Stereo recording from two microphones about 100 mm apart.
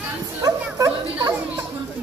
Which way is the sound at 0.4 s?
35° right (ahead or behind).